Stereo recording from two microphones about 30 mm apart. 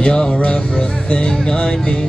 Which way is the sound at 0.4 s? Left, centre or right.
Left.